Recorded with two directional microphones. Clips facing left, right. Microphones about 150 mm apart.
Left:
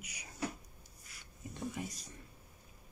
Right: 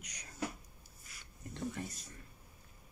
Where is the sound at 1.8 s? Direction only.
10° left (ahead or behind).